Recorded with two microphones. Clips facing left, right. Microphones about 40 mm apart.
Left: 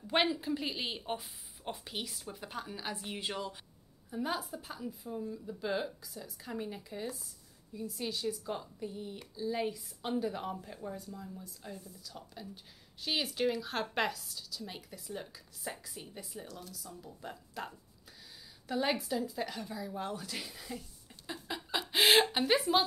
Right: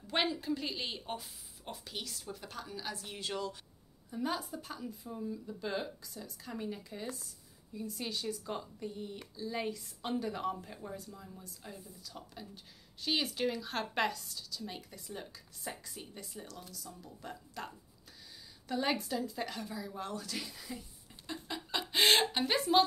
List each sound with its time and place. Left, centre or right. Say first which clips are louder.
0.0 s a woman's voice: left 3 dB; centre
4.1 s a woman's voice: even; centre
21.1 s a sound: left 1 dB; centre